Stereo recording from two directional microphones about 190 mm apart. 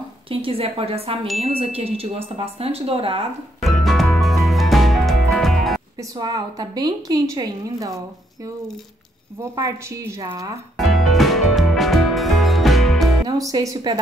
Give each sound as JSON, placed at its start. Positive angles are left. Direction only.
{"t": 0.3, "sound": "a woman's voice", "side_deg": -30}
{"t": 3.6, "sound": "music", "side_deg": 0}
{"t": 5.9, "sound": "a woman's voice", "side_deg": -20}
{"t": 9.4, "sound": "a woman's voice", "side_deg": -15}
{"t": 10.8, "sound": "music", "side_deg": 0}
{"t": 13.3, "sound": "a woman's voice", "side_deg": -20}